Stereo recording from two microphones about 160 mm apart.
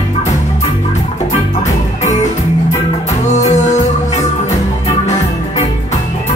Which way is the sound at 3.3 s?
45° left (ahead or behind).